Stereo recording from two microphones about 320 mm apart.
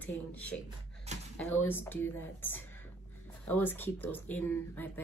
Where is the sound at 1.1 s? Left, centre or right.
Right.